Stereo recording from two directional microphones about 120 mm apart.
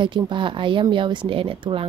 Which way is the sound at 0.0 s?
45° right (ahead or behind).